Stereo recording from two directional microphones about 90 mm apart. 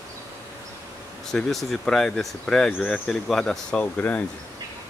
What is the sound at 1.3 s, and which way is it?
A man's voice, centre (ahead or behind).